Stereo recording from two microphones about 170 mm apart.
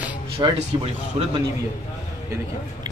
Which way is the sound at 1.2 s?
35° right (ahead or behind).